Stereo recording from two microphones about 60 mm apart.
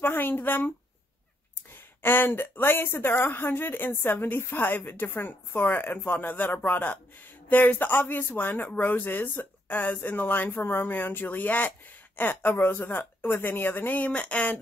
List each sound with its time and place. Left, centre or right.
0.0 s a woman's voice: left
1.7 s a woman's voice: left